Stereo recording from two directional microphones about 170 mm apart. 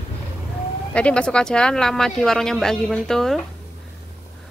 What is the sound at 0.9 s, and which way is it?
Speech, 5° left (ahead or behind).